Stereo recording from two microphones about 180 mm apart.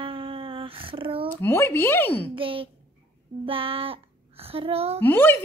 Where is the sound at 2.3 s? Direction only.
30° right (ahead or behind).